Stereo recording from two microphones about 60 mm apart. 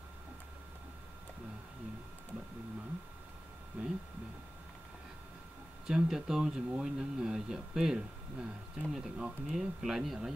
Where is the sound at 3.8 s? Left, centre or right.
Right.